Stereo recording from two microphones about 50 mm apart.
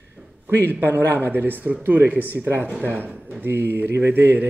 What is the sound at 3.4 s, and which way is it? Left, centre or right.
Speech, right.